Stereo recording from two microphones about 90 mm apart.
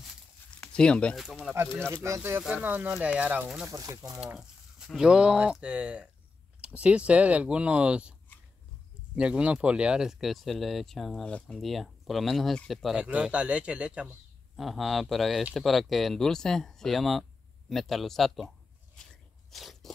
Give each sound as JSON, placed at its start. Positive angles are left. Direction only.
{"t": 0.7, "sound": "speech", "side_deg": 10}
{"t": 1.1, "sound": "speech", "side_deg": 0}
{"t": 1.5, "sound": "speech", "side_deg": -25}
{"t": 2.4, "sound": "speech", "side_deg": -20}
{"t": 3.6, "sound": "speech", "side_deg": -35}
{"t": 4.4, "sound": "speech", "side_deg": -5}
{"t": 9.1, "sound": "speech", "side_deg": -10}
{"t": 11.6, "sound": "speech", "side_deg": 0}
{"t": 13.0, "sound": "speech", "side_deg": -15}
{"t": 14.6, "sound": "speech", "side_deg": 0}
{"t": 18.9, "sound": "biting", "side_deg": 5}